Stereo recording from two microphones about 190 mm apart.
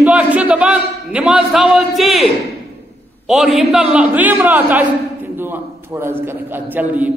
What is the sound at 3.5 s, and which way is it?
A man's voice, 5° right (ahead or behind).